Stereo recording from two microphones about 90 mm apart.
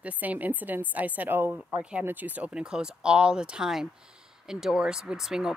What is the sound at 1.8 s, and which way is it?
Speech, 10° right (ahead or behind).